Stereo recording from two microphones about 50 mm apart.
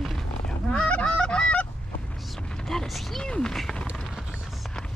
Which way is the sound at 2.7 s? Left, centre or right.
Centre.